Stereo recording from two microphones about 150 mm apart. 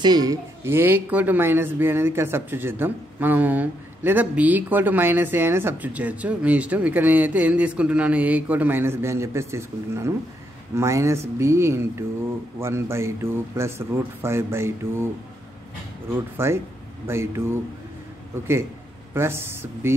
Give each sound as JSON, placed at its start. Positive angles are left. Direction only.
{"t": 0.0, "sound": "speech", "side_deg": -25}
{"t": 16.3, "sound": "speech", "side_deg": -15}
{"t": 19.1, "sound": "speech", "side_deg": -15}